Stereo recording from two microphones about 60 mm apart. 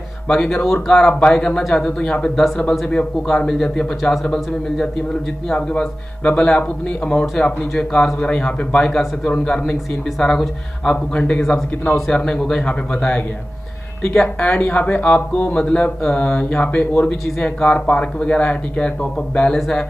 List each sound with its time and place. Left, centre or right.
0.3 s speech: centre
1.9 s a man's voice: left; by 4.8 s centre
5.5 s a man's voice: centre
14.2 s a man's voice: left; by 19.8 s centre